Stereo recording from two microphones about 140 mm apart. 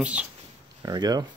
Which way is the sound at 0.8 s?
30° right (ahead or behind).